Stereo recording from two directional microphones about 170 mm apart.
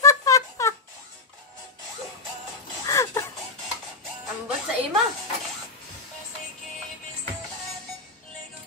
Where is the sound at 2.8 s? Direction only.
20° left (ahead or behind).